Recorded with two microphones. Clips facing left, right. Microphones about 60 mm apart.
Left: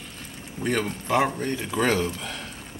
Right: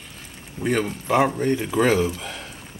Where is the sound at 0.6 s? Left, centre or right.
Centre.